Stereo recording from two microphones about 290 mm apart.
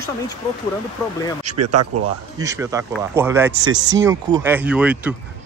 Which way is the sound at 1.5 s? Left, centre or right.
Right.